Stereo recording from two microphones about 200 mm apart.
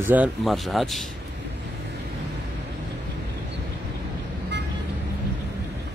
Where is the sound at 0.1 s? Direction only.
5° right (ahead or behind).